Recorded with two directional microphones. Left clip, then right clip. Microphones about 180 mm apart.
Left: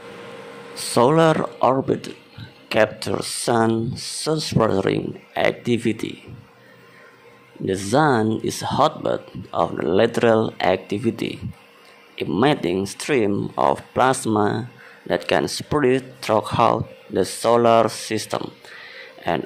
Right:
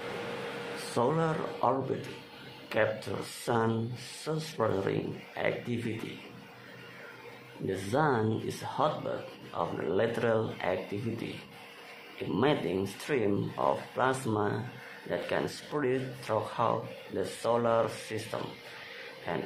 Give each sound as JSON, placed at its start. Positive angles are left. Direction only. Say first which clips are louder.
{"t": 0.9, "sound": "speech", "louder": "left 14 dB", "side_deg": 50}
{"t": 7.6, "sound": "speech", "louder": "left 11 dB", "side_deg": 45}